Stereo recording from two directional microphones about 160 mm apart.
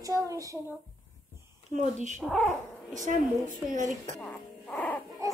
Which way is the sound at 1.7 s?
50° right (ahead or behind).